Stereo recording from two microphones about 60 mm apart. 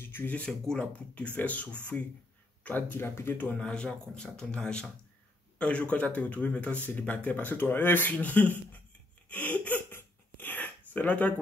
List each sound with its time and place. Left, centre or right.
0.1 s speech: left
0.4 s speech: centre
1.1 s speech: left
3.4 s speech: centre
9.3 s a sound: left